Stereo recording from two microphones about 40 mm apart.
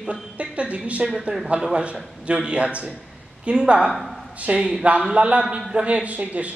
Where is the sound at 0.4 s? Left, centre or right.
Right.